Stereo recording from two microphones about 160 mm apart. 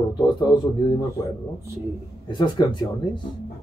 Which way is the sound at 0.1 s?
30° left (ahead or behind).